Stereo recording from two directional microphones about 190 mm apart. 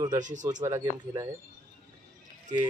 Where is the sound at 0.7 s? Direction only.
15° right (ahead or behind).